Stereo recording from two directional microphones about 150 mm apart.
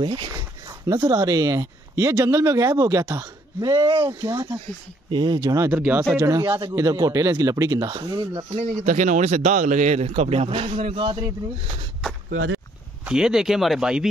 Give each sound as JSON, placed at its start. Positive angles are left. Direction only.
{"t": 0.0, "sound": "speech", "side_deg": -30}
{"t": 5.8, "sound": "speech", "side_deg": -10}
{"t": 6.1, "sound": "speech", "side_deg": -20}
{"t": 8.8, "sound": "a man's voice", "side_deg": -55}
{"t": 13.0, "sound": "speech", "side_deg": -5}